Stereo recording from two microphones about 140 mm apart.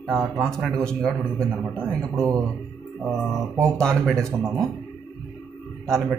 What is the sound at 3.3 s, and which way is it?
Speech, 20° right (ahead or behind).